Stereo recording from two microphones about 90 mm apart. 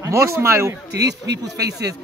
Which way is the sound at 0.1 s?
35° right (ahead or behind).